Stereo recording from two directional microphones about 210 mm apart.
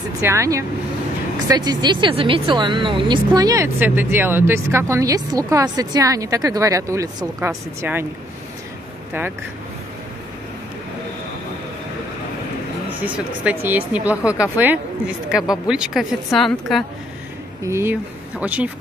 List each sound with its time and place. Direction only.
0.2 s speech: 15° right (ahead or behind)
13.0 s speech: 5° right (ahead or behind)
17.6 s speech: 10° right (ahead or behind)